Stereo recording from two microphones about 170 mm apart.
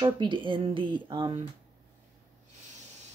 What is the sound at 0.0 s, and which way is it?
Speech, 30° right (ahead or behind).